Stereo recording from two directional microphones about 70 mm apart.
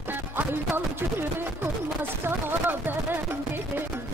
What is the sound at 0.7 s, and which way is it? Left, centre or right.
Speech, right.